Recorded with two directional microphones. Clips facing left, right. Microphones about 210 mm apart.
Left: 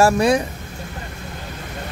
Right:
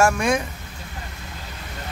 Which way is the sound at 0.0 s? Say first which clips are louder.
Left 4 dB; 35° left (ahead or behind).